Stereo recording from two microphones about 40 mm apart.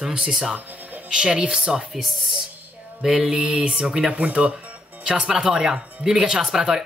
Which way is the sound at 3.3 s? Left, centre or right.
Right.